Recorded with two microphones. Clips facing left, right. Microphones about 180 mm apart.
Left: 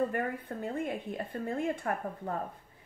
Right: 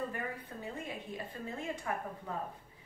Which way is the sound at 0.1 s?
55° left (ahead or behind).